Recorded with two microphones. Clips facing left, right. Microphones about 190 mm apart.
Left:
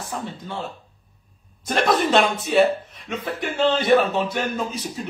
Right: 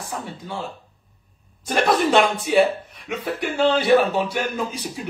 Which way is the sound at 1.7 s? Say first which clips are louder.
Right 1 dB; 10° right (ahead or behind).